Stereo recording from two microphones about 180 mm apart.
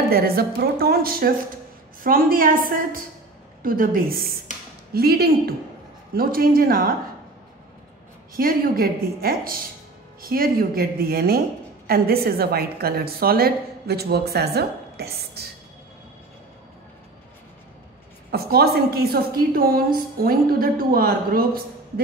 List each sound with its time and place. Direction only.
0.1 s a woman's voice: 55° right (ahead or behind)
8.4 s a woman's voice: 55° right (ahead or behind)
18.3 s a woman's voice: 60° right (ahead or behind)